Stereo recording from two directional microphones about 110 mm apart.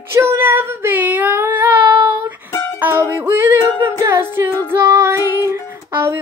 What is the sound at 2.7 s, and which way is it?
Child singing, 15° right (ahead or behind).